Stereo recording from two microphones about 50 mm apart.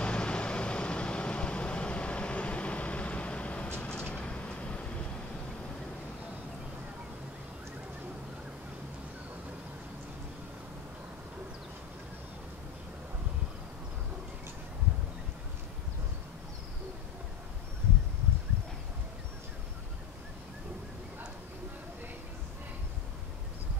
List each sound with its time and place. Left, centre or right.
0.0 s vehicle: left